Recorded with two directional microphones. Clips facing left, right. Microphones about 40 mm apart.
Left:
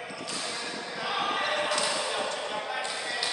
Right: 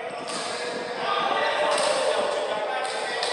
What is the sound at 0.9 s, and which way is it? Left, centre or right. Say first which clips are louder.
Basketball bounce: right 5 dB; centre.